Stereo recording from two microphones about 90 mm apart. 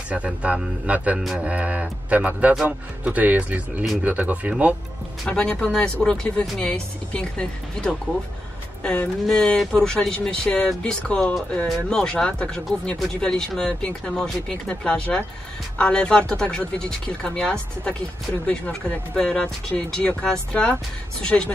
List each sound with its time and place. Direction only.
0.1 s speech: 15° right (ahead or behind)
5.2 s speech: 5° left (ahead or behind)
9.2 s speech: 5° left (ahead or behind)